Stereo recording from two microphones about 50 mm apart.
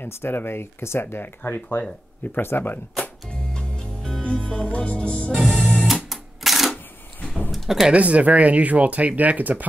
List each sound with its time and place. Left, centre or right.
0.0 s speech: left
3.0 s music: centre
5.6 s music: centre
6.0 s cash register: centre
7.5 s a sound: centre
7.9 s speech: right